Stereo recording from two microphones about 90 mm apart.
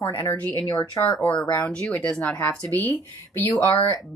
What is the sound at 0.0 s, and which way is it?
Speech, 45° left (ahead or behind).